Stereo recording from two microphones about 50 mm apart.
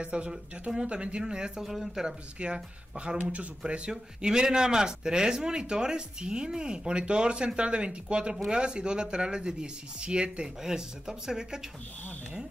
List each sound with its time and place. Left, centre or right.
0.0 s speech: right
2.3 s speech: right